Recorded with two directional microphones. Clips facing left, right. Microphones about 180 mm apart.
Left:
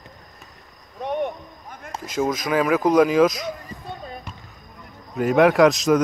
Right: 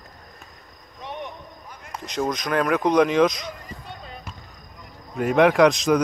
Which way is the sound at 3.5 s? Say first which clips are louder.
Left 5 dB; 45° left (ahead or behind).